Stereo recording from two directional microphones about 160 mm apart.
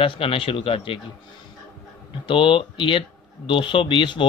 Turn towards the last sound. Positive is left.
turn(degrees=30)  # may be behind; listen again after turning